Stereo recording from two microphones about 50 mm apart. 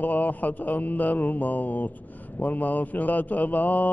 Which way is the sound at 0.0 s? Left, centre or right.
Left.